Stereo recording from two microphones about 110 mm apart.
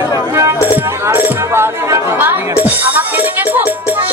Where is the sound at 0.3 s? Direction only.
25° right (ahead or behind).